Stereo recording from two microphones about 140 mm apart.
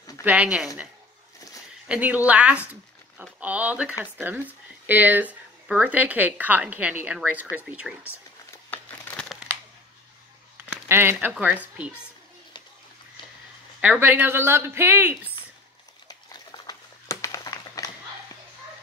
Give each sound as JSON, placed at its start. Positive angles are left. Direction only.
{"t": 0.2, "sound": "a woman's voice", "side_deg": -10}
{"t": 1.9, "sound": "a woman's voice", "side_deg": -10}
{"t": 2.7, "sound": "a sound", "side_deg": -10}
{"t": 4.0, "sound": "a woman's voice", "side_deg": -15}
{"t": 8.6, "sound": "crumpling", "side_deg": 15}
{"t": 10.6, "sound": "speech", "side_deg": -15}
{"t": 13.7, "sound": "a woman's voice", "side_deg": -10}
{"t": 16.1, "sound": "a sound", "side_deg": 30}